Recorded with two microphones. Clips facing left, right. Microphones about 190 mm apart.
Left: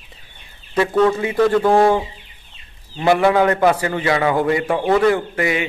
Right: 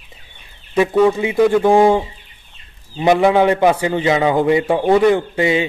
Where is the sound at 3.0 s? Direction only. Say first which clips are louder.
Right 2 dB; 20° right (ahead or behind).